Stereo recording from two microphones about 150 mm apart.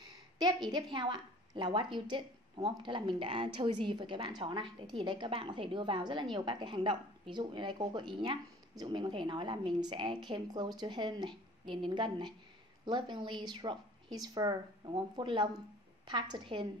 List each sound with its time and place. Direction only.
0.4 s a woman's voice: 30° right (ahead or behind)